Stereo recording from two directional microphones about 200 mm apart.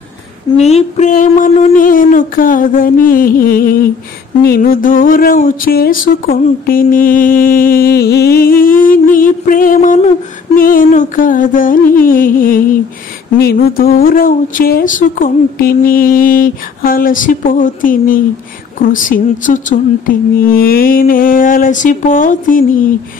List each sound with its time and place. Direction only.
0.6 s speech: 35° left (ahead or behind)